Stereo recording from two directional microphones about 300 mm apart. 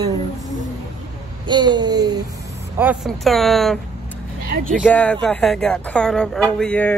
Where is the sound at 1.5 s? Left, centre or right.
Centre.